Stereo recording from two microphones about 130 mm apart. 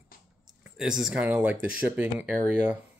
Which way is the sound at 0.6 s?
5° right (ahead or behind).